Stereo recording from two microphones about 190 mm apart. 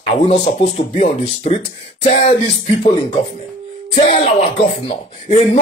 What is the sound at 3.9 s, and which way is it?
Speech, 30° left (ahead or behind).